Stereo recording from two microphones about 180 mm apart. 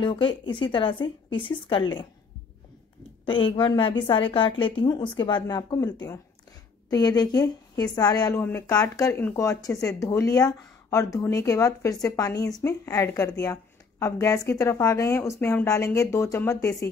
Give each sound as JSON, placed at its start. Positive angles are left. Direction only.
{"t": 0.0, "sound": "a woman's voice", "side_deg": 25}
{"t": 3.3, "sound": "a woman's voice", "side_deg": 25}